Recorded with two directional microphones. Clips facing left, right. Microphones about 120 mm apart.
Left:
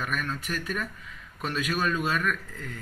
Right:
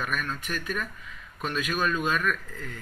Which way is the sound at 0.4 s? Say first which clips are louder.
Even; 30° left (ahead or behind).